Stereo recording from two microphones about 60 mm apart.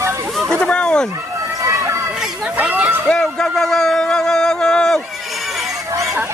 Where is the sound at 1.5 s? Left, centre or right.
Right.